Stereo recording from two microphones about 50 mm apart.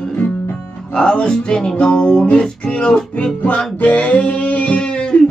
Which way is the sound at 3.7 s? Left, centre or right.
Left.